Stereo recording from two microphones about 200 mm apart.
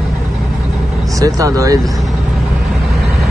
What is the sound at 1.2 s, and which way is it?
Speech, 15° right (ahead or behind).